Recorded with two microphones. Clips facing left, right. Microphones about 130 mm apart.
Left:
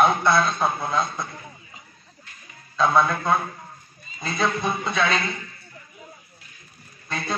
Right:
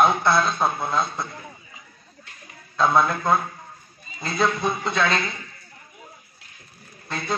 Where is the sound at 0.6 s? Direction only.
Centre (ahead or behind).